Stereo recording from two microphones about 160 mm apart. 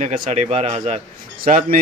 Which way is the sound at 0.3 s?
40° right (ahead or behind).